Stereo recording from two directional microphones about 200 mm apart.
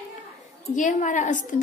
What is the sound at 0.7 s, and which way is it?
Speech, 40° left (ahead or behind).